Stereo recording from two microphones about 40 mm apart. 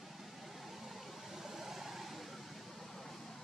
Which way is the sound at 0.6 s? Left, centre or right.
Centre.